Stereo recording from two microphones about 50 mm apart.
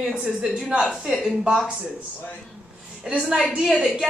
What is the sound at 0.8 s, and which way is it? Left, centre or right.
Speech, centre.